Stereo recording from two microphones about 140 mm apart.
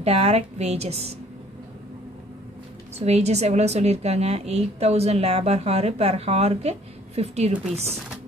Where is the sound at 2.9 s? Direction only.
50° right (ahead or behind).